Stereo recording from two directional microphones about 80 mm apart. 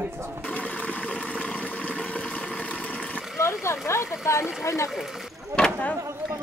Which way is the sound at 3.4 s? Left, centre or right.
Left.